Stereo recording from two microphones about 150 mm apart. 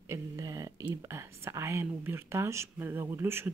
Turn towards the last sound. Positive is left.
turn(degrees=-15)  # may be behind; listen again after turning